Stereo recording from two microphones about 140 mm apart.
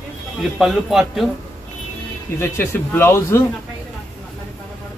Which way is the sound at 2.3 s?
15° left (ahead or behind).